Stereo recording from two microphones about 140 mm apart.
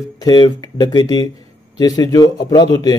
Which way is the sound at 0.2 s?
30° left (ahead or behind).